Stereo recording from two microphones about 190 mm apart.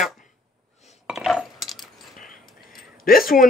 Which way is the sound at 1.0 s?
Centre (ahead or behind).